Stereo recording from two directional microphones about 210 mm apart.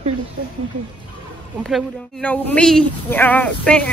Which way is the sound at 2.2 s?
5° left (ahead or behind).